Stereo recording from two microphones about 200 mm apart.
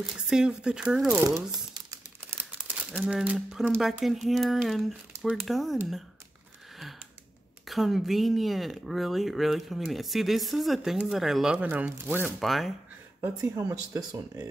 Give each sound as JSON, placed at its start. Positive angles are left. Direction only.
{"t": 0.0, "sound": "speech", "side_deg": -5}
{"t": 1.2, "sound": "speech", "side_deg": -20}
{"t": 7.6, "sound": "speech", "side_deg": 0}
{"t": 13.2, "sound": "speech", "side_deg": -15}